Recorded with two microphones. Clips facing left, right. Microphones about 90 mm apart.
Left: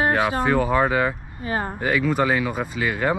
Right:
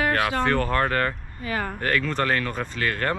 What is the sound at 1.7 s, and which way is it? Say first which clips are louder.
Speech: left 5 dB; 10° left (ahead or behind).